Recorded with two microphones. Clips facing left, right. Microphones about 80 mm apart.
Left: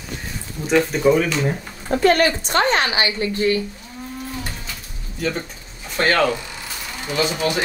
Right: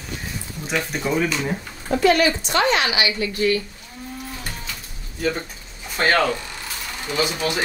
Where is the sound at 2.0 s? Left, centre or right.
Left.